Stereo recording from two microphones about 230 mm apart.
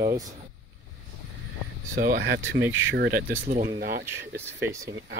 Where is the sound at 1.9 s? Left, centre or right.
Right.